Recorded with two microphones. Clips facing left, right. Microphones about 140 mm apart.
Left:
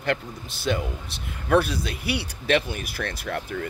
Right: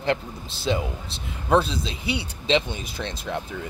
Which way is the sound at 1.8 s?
60° left (ahead or behind).